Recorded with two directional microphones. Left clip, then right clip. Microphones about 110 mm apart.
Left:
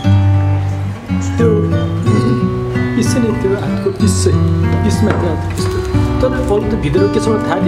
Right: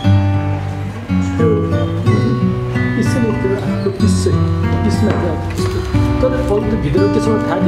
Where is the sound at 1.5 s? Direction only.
Centre (ahead or behind).